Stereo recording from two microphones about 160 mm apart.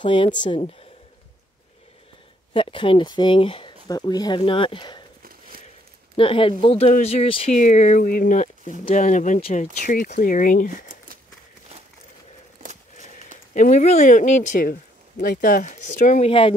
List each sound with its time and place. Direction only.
0.0 s speech: 30° left (ahead or behind)
2.5 s speech: 35° left (ahead or behind)
5.5 s a sound: 65° right (ahead or behind)
6.1 s speech: 35° left (ahead or behind)
7.5 s speech: 50° left (ahead or behind)
13.6 s speech: 45° left (ahead or behind)
14.7 s speech: 70° left (ahead or behind)
15.6 s speech: 50° left (ahead or behind)
16.3 s speech: 35° left (ahead or behind)